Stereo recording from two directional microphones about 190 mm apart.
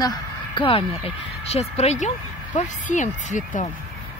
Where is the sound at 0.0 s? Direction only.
25° left (ahead or behind); by 3.7 s 40° left (ahead or behind).